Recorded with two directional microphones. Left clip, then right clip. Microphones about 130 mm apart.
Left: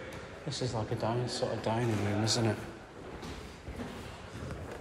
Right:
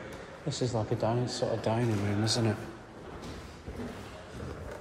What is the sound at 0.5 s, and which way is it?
Speech, 55° right (ahead or behind).